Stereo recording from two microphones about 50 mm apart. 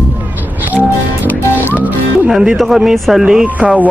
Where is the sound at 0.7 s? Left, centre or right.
Right.